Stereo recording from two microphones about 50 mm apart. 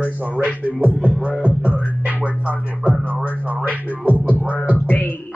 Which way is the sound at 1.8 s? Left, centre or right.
Right.